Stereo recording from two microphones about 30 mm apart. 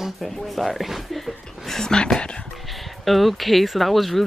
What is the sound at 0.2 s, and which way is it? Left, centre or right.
Speech, centre.